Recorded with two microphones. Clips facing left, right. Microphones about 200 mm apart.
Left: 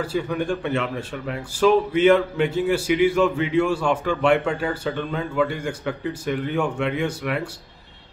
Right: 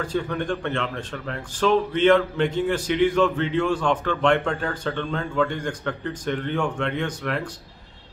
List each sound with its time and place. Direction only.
0.0 s speech: 5° left (ahead or behind)